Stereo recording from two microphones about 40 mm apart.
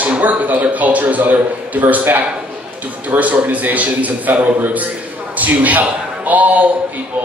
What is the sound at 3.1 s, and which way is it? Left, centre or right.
A man's voice, right.